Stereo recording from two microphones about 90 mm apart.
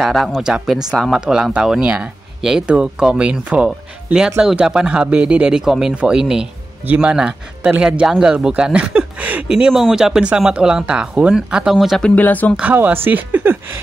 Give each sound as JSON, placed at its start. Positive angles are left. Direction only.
{"t": 0.0, "sound": "speech", "side_deg": 0}
{"t": 9.8, "sound": "speech", "side_deg": -5}
{"t": 12.0, "sound": "speech", "side_deg": 15}
{"t": 12.5, "sound": "speech", "side_deg": -15}